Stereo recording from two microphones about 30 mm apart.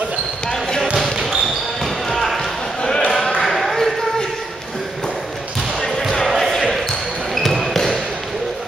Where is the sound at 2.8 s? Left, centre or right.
Left.